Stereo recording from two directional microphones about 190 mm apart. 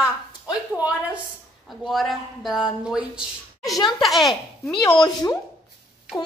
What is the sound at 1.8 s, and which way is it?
Speech, centre (ahead or behind).